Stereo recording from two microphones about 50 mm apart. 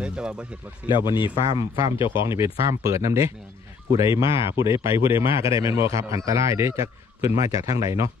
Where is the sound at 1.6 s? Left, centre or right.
Right.